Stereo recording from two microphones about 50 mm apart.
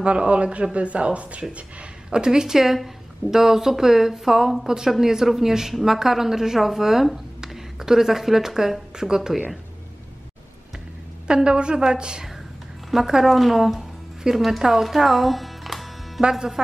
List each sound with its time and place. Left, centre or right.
0.0 s a woman's voice: right; by 9.4 s centre
11.2 s a woman's voice: centre
16.2 s a woman's voice: centre